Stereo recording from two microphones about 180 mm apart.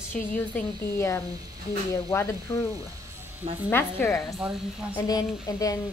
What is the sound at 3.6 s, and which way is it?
Speech, 15° left (ahead or behind).